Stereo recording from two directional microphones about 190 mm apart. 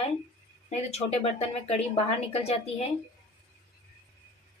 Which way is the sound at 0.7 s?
35° left (ahead or behind).